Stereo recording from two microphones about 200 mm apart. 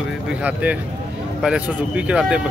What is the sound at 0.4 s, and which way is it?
Speech, 5° right (ahead or behind).